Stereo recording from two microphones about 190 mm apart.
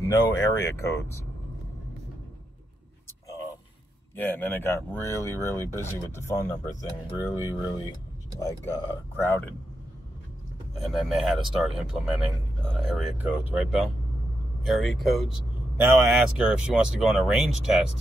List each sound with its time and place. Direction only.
0.0 s speech: 20° left (ahead or behind)
4.2 s speech: 10° left (ahead or behind)
10.8 s speech: centre (ahead or behind)